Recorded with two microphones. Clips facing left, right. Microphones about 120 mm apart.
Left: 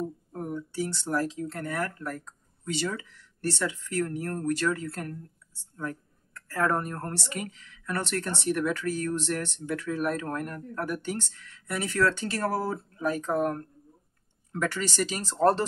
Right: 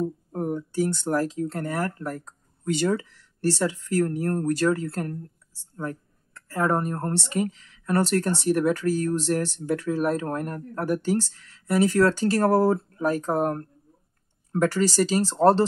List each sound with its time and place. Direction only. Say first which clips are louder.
0.3 s speech: right 6 dB; 40° right (ahead or behind)
2.6 s speech: right 8 dB; 50° right (ahead or behind); by 15.6 s 30° right (ahead or behind)